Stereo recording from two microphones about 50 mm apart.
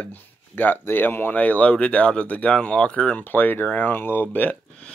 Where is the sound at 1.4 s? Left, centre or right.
Left.